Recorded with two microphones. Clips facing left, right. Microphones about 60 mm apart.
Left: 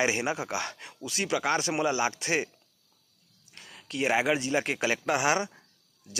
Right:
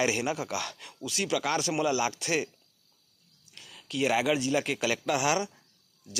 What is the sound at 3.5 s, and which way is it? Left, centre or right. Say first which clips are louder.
Speech: right 1 dB; left.